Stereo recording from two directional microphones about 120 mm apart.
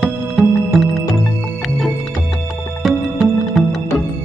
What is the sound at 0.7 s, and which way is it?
Music, centre (ahead or behind).